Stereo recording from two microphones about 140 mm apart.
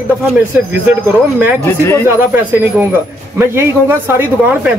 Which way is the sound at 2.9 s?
15° right (ahead or behind).